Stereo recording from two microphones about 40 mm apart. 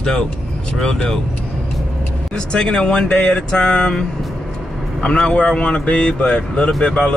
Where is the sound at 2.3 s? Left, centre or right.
Left.